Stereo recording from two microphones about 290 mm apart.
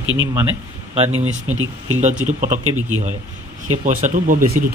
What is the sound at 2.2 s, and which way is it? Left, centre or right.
Speech, right.